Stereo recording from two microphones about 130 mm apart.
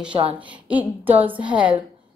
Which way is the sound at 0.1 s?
45° right (ahead or behind).